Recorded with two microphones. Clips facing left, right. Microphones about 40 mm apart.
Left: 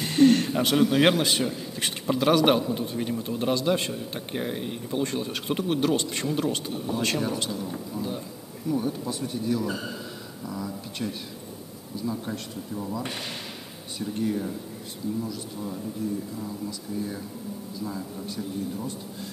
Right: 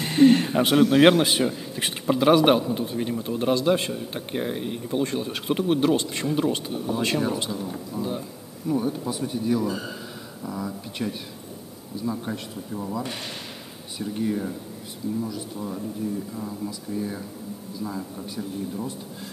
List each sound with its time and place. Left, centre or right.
0.0 s a man's voice: centre
9.7 s a man's voice: centre
10.4 s a man's voice: centre
16.9 s speech: right
17.8 s a man's voice: centre